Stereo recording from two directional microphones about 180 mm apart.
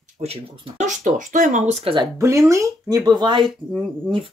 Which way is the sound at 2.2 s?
15° right (ahead or behind).